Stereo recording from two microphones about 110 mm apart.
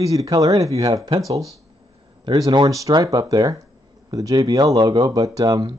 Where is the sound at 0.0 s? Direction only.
35° right (ahead or behind).